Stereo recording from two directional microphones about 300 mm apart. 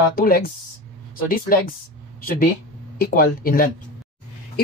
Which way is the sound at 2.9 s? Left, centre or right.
Left.